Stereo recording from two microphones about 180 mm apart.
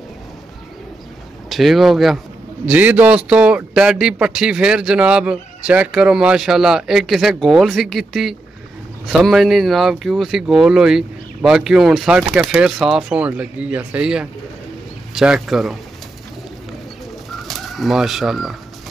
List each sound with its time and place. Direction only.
1.5 s a man's voice: centre (ahead or behind)
17.3 s bird: centre (ahead or behind)